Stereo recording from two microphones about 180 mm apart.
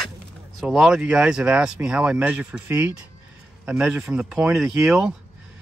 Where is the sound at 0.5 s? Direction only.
Centre (ahead or behind).